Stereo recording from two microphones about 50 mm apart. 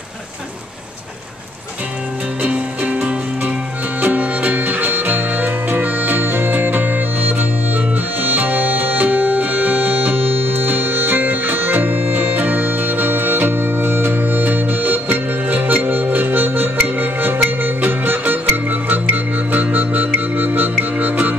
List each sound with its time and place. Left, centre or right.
2.4 s music: right
4.0 s music: right